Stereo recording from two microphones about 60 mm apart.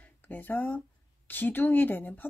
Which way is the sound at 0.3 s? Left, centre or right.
Left.